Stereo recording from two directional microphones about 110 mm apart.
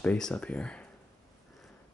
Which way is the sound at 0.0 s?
10° left (ahead or behind).